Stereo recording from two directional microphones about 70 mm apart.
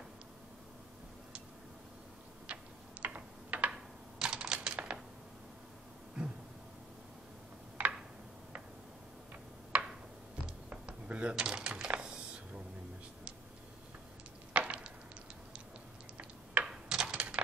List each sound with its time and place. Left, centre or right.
2.4 s tick-tock: centre
3.7 s typing: centre
4.7 s typewriter: centre
7.8 s a sound: centre
9.3 s tick-tock: centre
10.7 s a sound: centre
11.3 s typing: centre
14.5 s a sound: centre
16.6 s computer keyboard: centre